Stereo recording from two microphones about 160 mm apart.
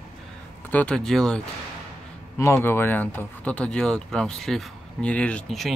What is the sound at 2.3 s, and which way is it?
Speech, 15° left (ahead or behind).